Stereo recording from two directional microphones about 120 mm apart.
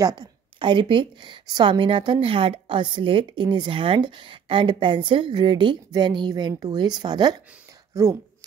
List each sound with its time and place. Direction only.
0.0 s a woman's voice: 35° right (ahead or behind)
7.9 s speech: 25° right (ahead or behind)